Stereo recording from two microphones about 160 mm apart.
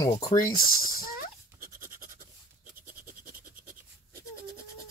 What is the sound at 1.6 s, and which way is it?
Scratch, 60° right (ahead or behind).